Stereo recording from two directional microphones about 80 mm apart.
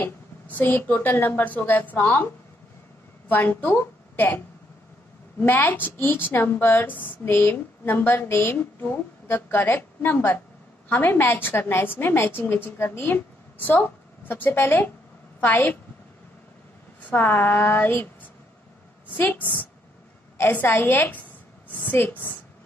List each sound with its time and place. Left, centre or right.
0.0 s a woman's voice: left
3.3 s a woman's voice: left
5.4 s a woman's voice: left
13.8 s a sound: left
14.6 s a woman's voice: left
17.1 s a woman's voice: left